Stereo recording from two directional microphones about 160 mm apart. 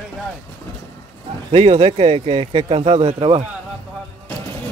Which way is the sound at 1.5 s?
40° right (ahead or behind).